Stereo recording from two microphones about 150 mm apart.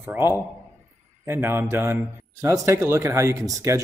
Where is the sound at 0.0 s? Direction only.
15° right (ahead or behind).